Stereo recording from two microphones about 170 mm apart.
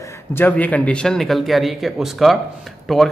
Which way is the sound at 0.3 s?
10° left (ahead or behind).